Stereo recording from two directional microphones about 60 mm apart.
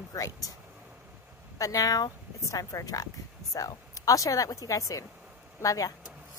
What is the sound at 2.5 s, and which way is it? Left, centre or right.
Speech, left.